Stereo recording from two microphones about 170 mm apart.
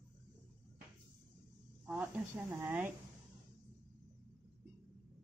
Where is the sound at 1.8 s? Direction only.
10° right (ahead or behind).